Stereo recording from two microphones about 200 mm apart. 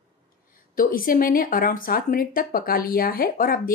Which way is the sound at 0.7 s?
45° left (ahead or behind).